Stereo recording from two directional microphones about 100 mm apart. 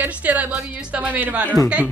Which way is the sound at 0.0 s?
15° right (ahead or behind).